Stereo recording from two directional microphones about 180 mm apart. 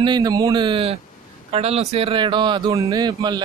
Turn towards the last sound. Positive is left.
turn(degrees=-20)  # may be behind; listen again after turning